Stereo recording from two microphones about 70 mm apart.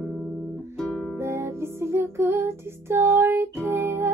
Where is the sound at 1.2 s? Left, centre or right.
Right.